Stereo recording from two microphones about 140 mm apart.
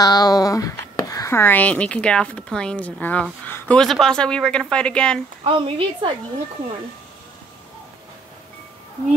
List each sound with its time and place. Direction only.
0.0 s speech: 25° left (ahead or behind); by 5.2 s 5° left (ahead or behind)
5.4 s a woman's voice: 35° right (ahead or behind)